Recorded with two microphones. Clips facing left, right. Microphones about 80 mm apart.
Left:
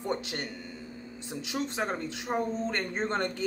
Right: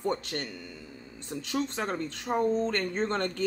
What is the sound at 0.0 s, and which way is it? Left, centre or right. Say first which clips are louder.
Speech: right 2 dB; centre.